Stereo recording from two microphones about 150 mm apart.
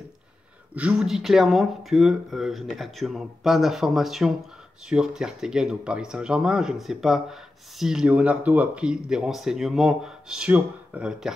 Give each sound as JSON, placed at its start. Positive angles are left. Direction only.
{"t": 0.7, "sound": "speech", "side_deg": -5}